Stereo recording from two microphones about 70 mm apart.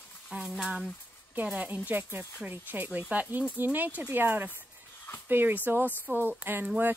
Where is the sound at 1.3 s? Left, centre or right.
Right.